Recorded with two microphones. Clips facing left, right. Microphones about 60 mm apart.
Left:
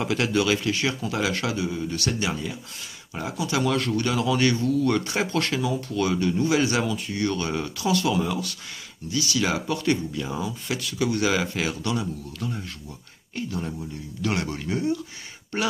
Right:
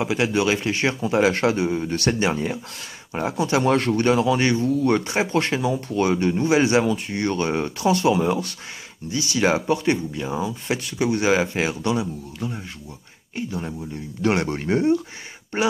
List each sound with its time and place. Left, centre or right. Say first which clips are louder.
0.0 s speech: right 2 dB; centre
14.2 s speech: right 6 dB; right